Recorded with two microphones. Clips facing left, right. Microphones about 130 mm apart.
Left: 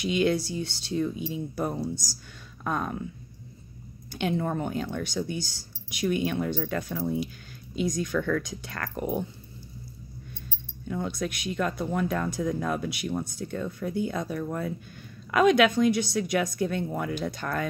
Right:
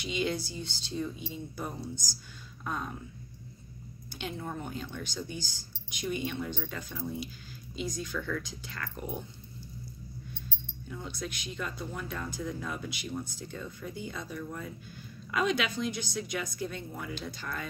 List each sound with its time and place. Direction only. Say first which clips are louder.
0.0 s speech: left 8 dB; 60° left (ahead or behind)
4.2 s speech: left 10 dB; 60° left (ahead or behind)
10.9 s speech: left 9 dB; 65° left (ahead or behind)